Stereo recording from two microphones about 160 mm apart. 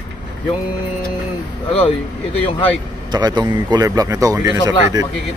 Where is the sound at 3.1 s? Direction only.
25° right (ahead or behind).